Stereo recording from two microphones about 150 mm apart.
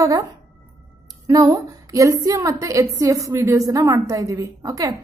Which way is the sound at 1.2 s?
25° right (ahead or behind).